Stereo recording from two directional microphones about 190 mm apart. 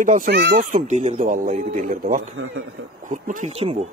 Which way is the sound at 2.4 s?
90° right.